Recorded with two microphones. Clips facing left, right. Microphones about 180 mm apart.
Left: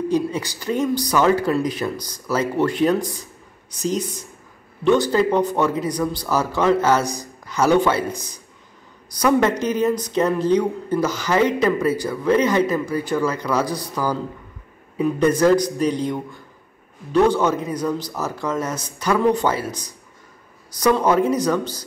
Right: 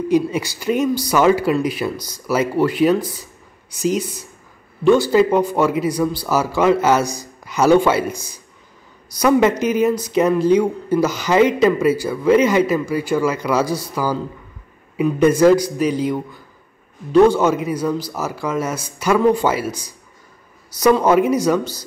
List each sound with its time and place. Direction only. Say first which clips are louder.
0.1 s speech: right 4 dB; 10° right (ahead or behind)
8.1 s a man's voice: right 1 dB; 35° left (ahead or behind)
9.2 s speech: right 3 dB; 10° right (ahead or behind)
20.8 s speech: right 3 dB; 10° right (ahead or behind)